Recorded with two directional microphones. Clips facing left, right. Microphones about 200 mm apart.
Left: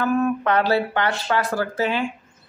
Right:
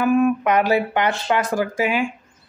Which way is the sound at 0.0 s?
15° right (ahead or behind).